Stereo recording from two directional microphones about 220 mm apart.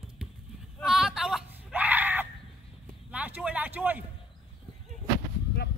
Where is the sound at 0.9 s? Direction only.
Centre (ahead or behind).